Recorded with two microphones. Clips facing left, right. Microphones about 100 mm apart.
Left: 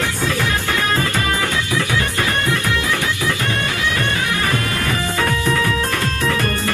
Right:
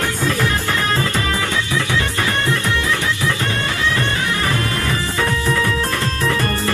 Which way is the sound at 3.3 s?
25° right (ahead or behind).